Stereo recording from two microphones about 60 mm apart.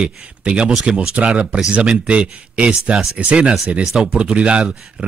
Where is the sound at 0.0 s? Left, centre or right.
Centre.